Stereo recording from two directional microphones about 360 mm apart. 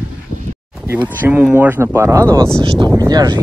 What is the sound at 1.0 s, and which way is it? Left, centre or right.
Speech, centre.